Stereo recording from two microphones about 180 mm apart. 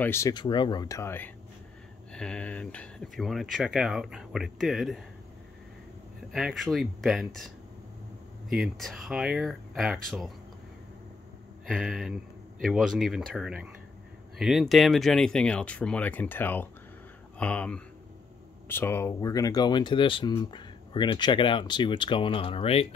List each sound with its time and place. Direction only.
0.0 s speech: 15° left (ahead or behind)
6.3 s speech: centre (ahead or behind)
11.6 s speech: 5° right (ahead or behind); by 22.8 s 30° left (ahead or behind)